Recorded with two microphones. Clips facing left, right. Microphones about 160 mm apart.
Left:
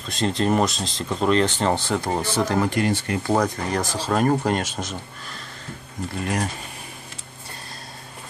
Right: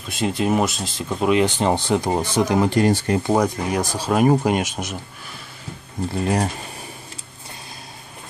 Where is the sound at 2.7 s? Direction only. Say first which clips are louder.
Right 5 dB; 35° right (ahead or behind).